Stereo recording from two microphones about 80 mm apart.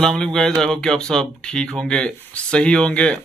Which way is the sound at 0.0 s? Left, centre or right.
Centre.